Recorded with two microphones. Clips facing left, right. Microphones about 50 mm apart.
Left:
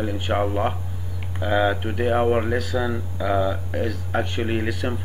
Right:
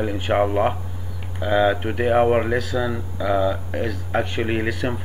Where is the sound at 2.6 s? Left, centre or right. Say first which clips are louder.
Right 1 dB; centre.